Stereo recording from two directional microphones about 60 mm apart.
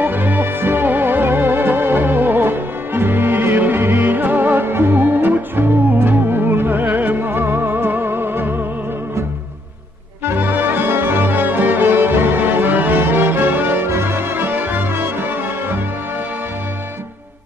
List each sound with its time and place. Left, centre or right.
0.0 s music: right
10.2 s music: right